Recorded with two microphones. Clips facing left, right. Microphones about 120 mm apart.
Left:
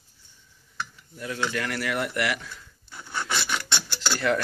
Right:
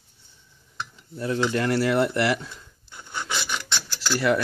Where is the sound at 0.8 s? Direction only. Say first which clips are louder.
Right 3 dB; 30° right (ahead or behind).